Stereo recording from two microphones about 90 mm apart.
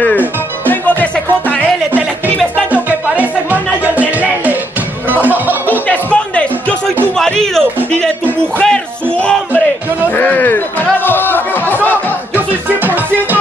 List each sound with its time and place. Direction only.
2.2 s music: 15° left (ahead or behind)
2.7 s music: 15° right (ahead or behind)
5.7 s music: 15° left (ahead or behind)
7.5 s music: 5° left (ahead or behind)
10.1 s music: 20° left (ahead or behind)
11.1 s a sound: 20° left (ahead or behind)
12.4 s music: 20° right (ahead or behind)